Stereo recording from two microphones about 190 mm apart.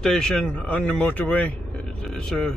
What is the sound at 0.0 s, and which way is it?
A man's voice, 5° left (ahead or behind).